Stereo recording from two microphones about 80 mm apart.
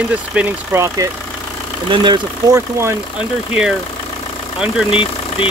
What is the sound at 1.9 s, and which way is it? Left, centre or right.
Speech, right.